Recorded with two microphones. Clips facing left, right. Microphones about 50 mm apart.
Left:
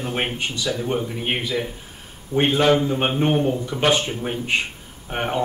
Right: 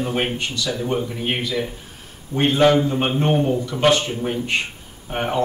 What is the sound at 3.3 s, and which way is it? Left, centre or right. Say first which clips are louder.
Speech: right 1 dB; centre.